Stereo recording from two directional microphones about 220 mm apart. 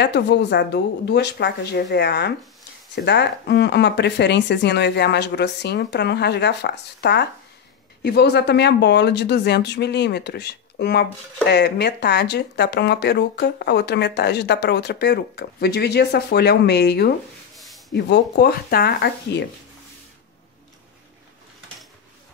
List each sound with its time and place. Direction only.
0.0 s speech: 50° left (ahead or behind)
17.6 s a sound: centre (ahead or behind)
17.9 s speech: 50° left (ahead or behind)